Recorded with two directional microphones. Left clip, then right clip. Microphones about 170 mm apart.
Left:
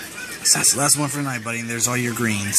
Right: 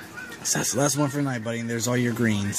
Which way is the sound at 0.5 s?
25° right (ahead or behind).